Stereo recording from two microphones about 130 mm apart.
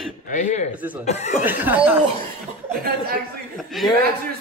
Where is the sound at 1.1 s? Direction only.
60° left (ahead or behind).